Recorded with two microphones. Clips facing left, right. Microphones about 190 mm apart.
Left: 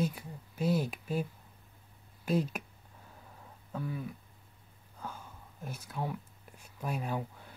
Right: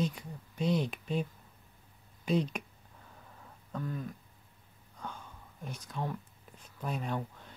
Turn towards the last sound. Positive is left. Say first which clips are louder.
# even
turn(degrees=5)  # may be behind; listen again after turning